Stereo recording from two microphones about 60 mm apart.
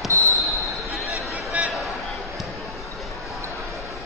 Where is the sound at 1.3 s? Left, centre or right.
Right.